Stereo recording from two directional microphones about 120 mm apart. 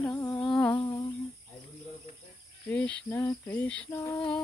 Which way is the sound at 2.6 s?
10° left (ahead or behind).